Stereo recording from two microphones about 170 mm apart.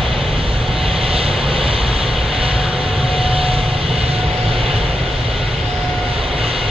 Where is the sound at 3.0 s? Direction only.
35° right (ahead or behind).